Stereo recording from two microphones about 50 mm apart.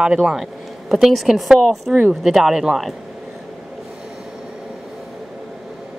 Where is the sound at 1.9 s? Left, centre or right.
Centre.